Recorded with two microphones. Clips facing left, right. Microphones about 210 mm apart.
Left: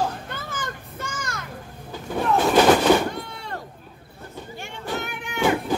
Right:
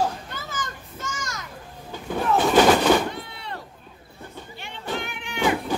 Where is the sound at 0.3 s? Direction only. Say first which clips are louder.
Left 2 dB; 55° left (ahead or behind).